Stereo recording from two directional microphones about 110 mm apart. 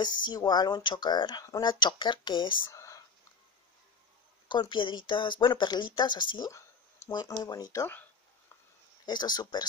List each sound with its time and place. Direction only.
0.0 s speech: 40° left (ahead or behind)
2.7 s a sound: 30° left (ahead or behind)
4.5 s speech: 45° left (ahead or behind)
9.0 s speech: 40° left (ahead or behind)